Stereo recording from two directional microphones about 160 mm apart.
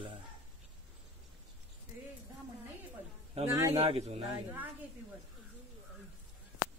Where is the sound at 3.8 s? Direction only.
40° right (ahead or behind).